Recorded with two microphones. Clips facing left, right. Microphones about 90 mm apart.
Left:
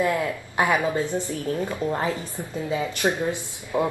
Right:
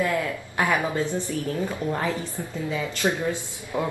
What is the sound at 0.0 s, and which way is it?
Speech, 20° left (ahead or behind).